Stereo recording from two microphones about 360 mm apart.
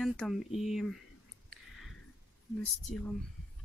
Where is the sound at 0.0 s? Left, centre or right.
Centre.